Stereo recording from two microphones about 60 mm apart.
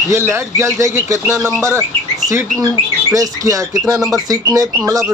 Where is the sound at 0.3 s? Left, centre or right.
Right.